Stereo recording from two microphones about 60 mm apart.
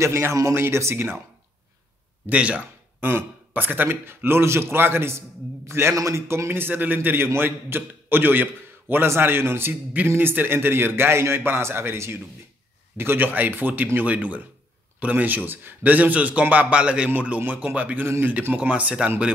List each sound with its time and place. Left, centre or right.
0.0 s a man's voice: right
2.2 s a man's voice: right
3.0 s a man's voice: right; by 19.3 s centre